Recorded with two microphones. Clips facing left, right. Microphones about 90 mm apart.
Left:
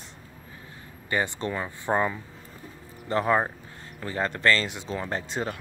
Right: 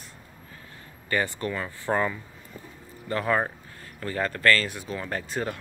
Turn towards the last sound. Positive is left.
turn(degrees=20)  # may be behind; listen again after turning